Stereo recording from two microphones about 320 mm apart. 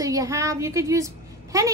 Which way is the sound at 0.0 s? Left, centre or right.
Centre.